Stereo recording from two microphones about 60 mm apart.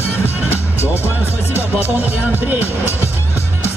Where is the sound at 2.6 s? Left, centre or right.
Left.